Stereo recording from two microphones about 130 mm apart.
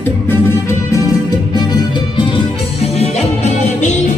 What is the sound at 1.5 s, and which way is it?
Music, 35° left (ahead or behind).